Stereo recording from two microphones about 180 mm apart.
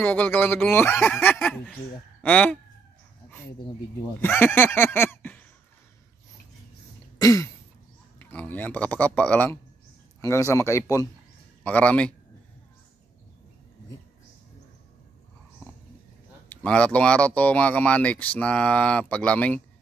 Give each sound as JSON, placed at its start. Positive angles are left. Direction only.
{"t": 0.0, "sound": "speech", "side_deg": 10}
{"t": 4.2, "sound": "speech", "side_deg": 10}
{"t": 7.2, "sound": "throat clearing", "side_deg": 15}
{"t": 8.2, "sound": "a man's voice", "side_deg": 10}
{"t": 16.4, "sound": "speech", "side_deg": 5}